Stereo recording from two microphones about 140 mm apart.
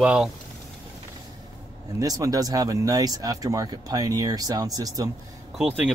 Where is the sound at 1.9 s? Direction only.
25° right (ahead or behind).